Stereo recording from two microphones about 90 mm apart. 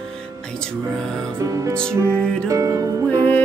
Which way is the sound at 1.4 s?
35° right (ahead or behind).